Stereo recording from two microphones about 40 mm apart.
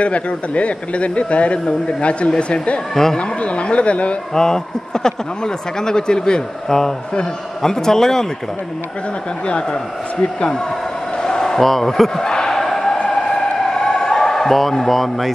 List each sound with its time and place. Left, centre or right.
0.0 s a man's voice: left
2.9 s speech: centre
3.2 s a man's voice: left
4.3 s speech: centre
9.5 s speech: left
11.2 s a man's voice: centre
12.3 s a sound: centre